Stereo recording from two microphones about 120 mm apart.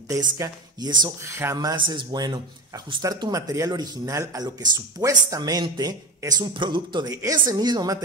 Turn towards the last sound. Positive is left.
turn(degrees=-35)  # may be behind; listen again after turning